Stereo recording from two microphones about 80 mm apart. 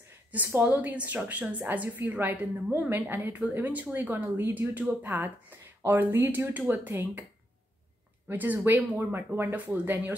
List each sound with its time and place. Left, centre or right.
0.3 s a woman's voice: right
8.3 s a woman's voice: right